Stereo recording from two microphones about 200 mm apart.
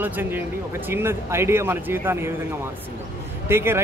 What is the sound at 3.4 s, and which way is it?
Speech, 10° right (ahead or behind).